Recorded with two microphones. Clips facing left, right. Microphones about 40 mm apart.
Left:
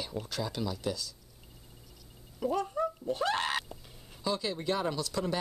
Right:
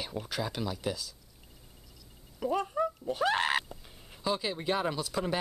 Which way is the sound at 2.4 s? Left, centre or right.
Centre.